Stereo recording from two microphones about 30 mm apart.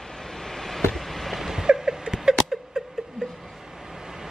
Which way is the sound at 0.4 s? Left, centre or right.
Centre.